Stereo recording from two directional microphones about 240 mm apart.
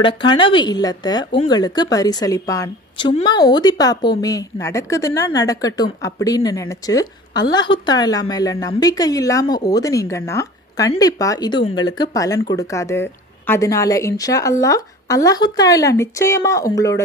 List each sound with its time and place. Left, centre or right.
0.0 s a woman's voice: left